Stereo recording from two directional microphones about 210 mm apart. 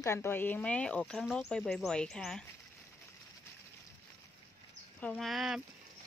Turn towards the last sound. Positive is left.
turn(degrees=0)  # may be behind; listen again after turning